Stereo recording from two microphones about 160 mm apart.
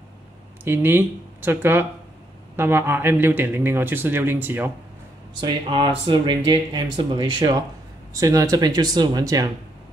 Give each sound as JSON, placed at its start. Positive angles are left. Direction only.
{"t": 0.7, "sound": "a man's voice", "side_deg": -15}
{"t": 5.4, "sound": "speech", "side_deg": -30}